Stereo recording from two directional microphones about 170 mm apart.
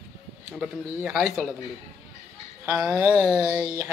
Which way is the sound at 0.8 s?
15° right (ahead or behind).